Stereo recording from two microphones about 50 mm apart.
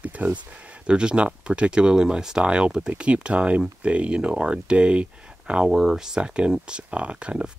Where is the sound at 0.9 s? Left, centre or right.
Centre.